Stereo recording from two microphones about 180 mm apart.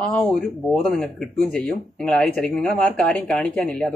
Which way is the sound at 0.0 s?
5° left (ahead or behind).